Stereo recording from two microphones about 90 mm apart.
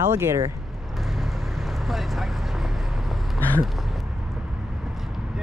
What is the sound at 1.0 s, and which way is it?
Vehicle, centre (ahead or behind).